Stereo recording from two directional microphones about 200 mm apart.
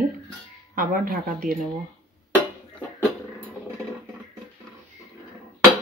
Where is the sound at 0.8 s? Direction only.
45° right (ahead or behind).